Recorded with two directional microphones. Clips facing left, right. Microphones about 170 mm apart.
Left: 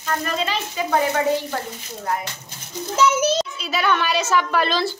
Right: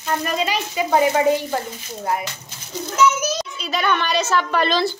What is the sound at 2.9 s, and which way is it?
Speech, 30° left (ahead or behind).